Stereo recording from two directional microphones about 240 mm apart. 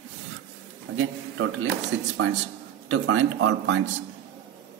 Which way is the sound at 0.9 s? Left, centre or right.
Right.